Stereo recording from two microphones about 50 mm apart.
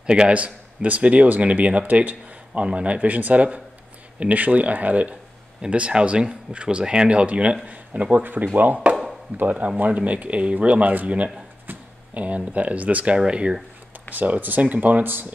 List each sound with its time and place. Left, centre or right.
0.0 s speech: centre
5.6 s speech: right
8.2 s speech: right; by 13.6 s centre
14.1 s speech: right